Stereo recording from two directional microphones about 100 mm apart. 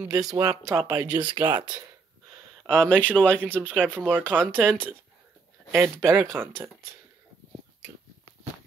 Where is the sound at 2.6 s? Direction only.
10° left (ahead or behind).